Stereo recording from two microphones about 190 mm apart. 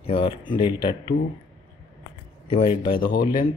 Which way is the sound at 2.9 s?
45° left (ahead or behind).